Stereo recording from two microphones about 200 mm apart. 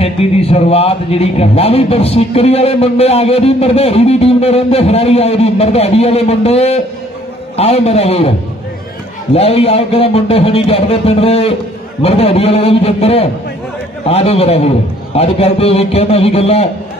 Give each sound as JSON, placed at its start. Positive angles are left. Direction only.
{"t": 0.0, "sound": "a man's voice", "side_deg": 30}
{"t": 9.3, "sound": "a man's voice", "side_deg": 30}